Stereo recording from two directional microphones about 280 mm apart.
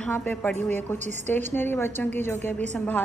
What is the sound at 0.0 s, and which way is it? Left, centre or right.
Speech, centre.